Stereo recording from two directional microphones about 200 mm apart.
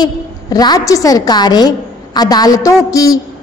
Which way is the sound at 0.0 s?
20° left (ahead or behind).